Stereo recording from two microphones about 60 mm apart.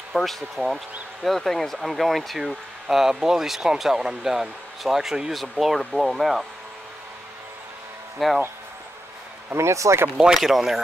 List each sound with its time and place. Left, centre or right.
0.1 s speech: centre
8.2 s speech: centre
9.5 s speech: right
10.1 s speech: centre